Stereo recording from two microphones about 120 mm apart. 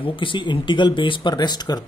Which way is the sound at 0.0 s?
45° left (ahead or behind).